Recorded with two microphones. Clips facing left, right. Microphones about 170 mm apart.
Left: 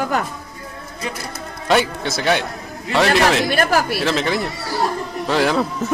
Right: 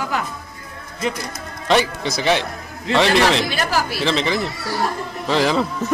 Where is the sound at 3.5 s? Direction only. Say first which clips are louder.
Left 4 dB; 55° left (ahead or behind).